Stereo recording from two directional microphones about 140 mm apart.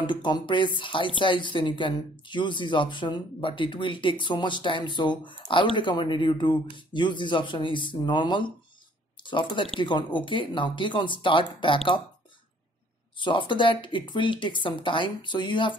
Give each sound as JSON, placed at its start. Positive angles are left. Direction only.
{"t": 0.0, "sound": "speech", "side_deg": 35}
{"t": 13.2, "sound": "speech", "side_deg": 35}